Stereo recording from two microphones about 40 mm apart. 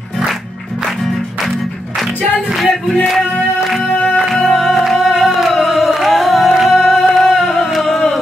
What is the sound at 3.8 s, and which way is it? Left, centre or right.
Music, centre.